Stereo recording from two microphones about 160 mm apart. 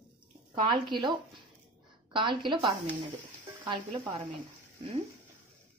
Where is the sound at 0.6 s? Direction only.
30° right (ahead or behind).